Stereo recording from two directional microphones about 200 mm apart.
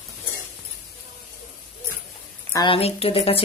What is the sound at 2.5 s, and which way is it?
Speech, 25° left (ahead or behind).